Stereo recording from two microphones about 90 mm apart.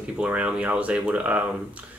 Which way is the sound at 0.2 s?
15° right (ahead or behind).